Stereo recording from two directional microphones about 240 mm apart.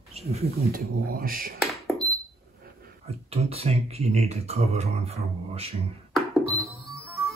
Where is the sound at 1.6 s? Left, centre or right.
Centre.